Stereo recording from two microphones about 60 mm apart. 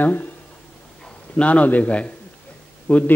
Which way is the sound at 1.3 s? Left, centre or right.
Left.